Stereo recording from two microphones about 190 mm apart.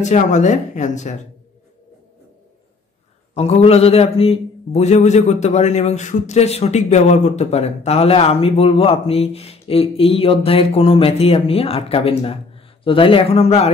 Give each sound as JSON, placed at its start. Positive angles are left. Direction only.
{"t": 0.0, "sound": "a man's voice", "side_deg": 40}
{"t": 3.3, "sound": "a man's voice", "side_deg": 35}